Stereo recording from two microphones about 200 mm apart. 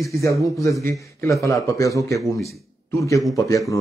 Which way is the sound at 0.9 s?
15° left (ahead or behind).